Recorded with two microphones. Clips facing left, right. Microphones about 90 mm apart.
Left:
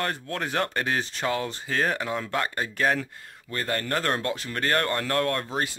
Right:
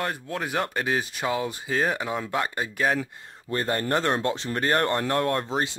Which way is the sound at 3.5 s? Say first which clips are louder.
Right 3 dB; 25° right (ahead or behind).